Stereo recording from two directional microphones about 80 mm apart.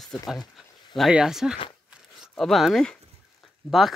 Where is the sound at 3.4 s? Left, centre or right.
Centre.